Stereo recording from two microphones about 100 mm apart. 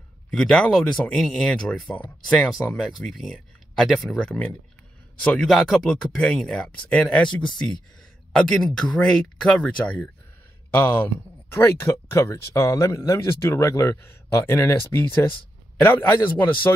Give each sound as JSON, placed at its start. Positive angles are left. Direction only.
{"t": 0.3, "sound": "speech", "side_deg": 10}
{"t": 8.3, "sound": "speech", "side_deg": 5}
{"t": 11.4, "sound": "speech", "side_deg": 25}